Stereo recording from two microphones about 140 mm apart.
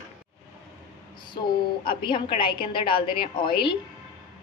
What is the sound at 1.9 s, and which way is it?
A woman's voice, 35° left (ahead or behind).